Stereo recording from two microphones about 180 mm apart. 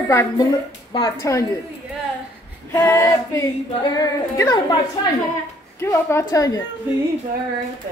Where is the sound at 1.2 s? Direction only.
15° left (ahead or behind).